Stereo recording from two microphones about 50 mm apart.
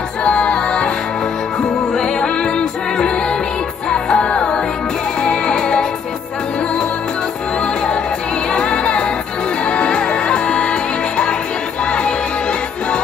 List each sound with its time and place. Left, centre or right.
0.2 s music: centre
7.6 s music: centre